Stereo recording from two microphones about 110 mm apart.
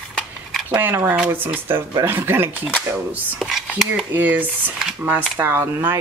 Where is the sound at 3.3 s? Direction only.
5° right (ahead or behind).